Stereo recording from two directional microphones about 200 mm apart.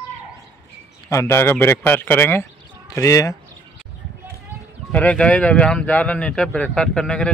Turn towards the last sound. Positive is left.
turn(degrees=5)  # may be behind; listen again after turning